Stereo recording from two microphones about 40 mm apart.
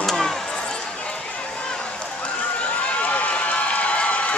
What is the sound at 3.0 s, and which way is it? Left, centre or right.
Run, left.